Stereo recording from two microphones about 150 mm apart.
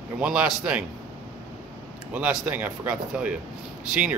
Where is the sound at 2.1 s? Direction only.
10° right (ahead or behind).